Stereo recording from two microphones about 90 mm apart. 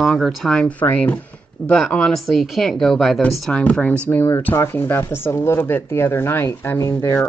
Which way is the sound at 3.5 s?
15° left (ahead or behind).